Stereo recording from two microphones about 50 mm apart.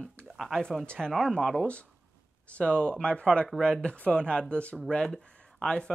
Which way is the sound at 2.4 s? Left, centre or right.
Left.